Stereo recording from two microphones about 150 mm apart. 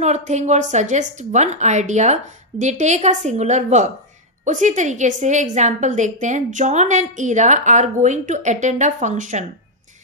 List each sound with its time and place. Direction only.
0.0 s a woman's voice: 50° right (ahead or behind)